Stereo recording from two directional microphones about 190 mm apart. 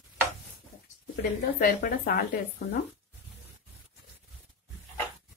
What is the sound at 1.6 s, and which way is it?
Speech, 50° left (ahead or behind).